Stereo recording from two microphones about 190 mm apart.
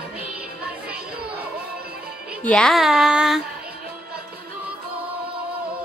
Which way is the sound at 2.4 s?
5° left (ahead or behind).